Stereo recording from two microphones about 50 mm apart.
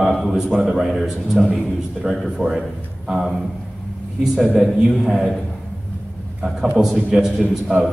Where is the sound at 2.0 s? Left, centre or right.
Centre.